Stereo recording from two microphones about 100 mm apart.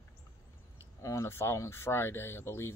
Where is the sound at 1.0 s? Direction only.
25° left (ahead or behind).